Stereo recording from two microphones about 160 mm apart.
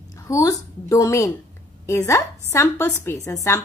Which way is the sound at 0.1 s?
20° left (ahead or behind).